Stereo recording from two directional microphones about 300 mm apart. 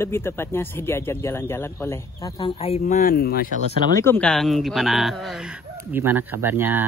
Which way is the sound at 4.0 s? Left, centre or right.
Centre.